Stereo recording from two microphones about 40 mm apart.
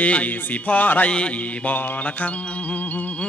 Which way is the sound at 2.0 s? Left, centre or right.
Left.